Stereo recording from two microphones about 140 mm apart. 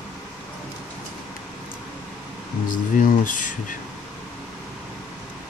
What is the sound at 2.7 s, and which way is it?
Speech, 70° left (ahead or behind).